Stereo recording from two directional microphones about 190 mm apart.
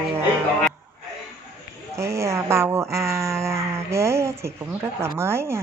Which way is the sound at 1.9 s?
15° right (ahead or behind).